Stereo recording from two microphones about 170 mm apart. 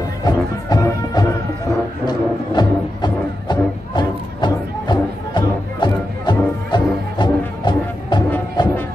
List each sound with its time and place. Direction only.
0.2 s music: 25° left (ahead or behind)